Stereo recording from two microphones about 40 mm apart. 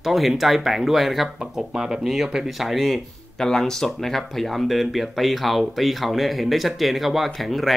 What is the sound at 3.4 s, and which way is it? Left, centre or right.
Speech, centre.